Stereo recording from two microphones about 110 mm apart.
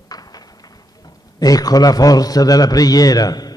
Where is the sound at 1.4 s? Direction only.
35° left (ahead or behind).